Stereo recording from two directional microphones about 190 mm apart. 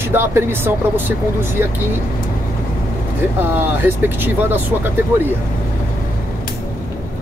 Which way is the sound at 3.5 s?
10° right (ahead or behind).